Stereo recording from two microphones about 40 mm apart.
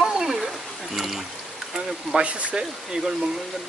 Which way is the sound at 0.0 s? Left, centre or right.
Centre.